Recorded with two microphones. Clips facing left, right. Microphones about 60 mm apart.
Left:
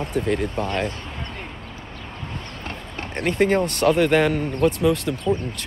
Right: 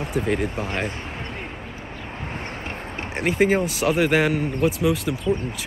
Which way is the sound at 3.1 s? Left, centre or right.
Centre.